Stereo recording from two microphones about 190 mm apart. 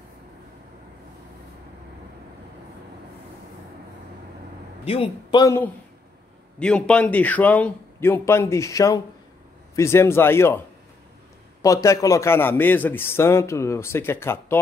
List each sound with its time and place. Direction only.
4.8 s a man's voice: 30° left (ahead or behind)
6.6 s a man's voice: 5° left (ahead or behind)
11.6 s a man's voice: 15° left (ahead or behind)